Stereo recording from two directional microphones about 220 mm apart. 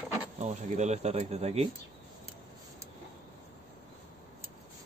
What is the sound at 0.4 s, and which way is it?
Speech, 30° right (ahead or behind).